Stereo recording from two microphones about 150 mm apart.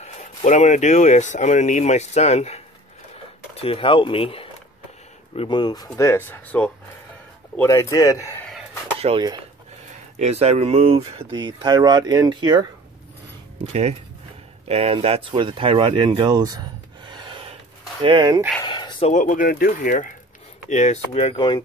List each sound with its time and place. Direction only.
0.0 s speech: 50° left (ahead or behind)
3.6 s speech: 40° left (ahead or behind)
5.9 s speech: 15° left (ahead or behind)
8.9 s a sound: 40° right (ahead or behind)
10.1 s speech: 45° right (ahead or behind)
13.7 s speech: 45° right (ahead or behind); by 18.4 s 30° right (ahead or behind)
18.6 s a sound: 30° left (ahead or behind)
19.0 s speech: 60° left (ahead or behind)
20.7 s speech: 50° left (ahead or behind)